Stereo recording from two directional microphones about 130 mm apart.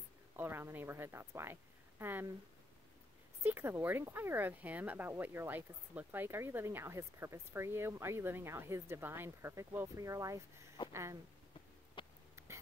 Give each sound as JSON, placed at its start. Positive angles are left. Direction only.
{"t": 0.4, "sound": "speech", "side_deg": -15}
{"t": 3.4, "sound": "speech", "side_deg": -20}
{"t": 12.0, "sound": "hiccup", "side_deg": 40}